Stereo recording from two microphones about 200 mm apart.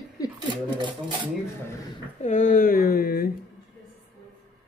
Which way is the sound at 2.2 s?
40° left (ahead or behind).